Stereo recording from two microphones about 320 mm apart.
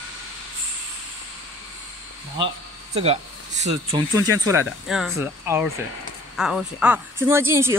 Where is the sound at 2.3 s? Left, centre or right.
Centre.